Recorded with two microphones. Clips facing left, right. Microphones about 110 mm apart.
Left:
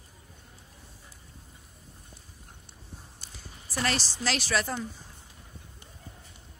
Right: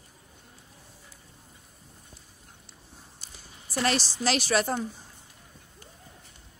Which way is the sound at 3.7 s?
25° right (ahead or behind).